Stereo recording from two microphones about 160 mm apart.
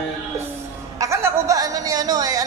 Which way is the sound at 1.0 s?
20° right (ahead or behind).